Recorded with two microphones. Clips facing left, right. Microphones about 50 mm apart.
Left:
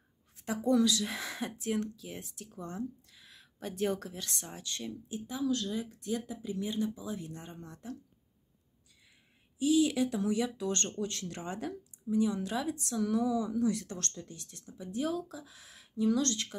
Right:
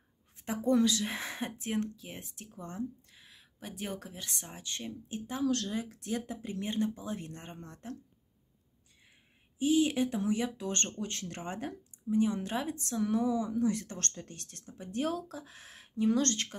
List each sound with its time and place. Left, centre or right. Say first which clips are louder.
0.5 s speech: even; right
5.2 s speech: right 1 dB; right
9.6 s speech: even; right